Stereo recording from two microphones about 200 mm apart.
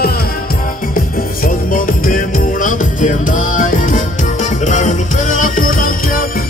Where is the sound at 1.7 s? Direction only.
40° left (ahead or behind).